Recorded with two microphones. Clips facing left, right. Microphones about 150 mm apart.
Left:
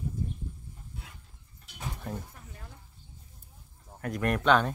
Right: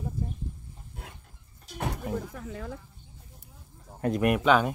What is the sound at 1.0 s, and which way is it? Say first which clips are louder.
Dog: right 5 dB; 50° right (ahead or behind).